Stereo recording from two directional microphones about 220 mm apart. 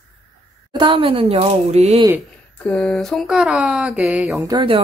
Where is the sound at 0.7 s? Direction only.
20° right (ahead or behind).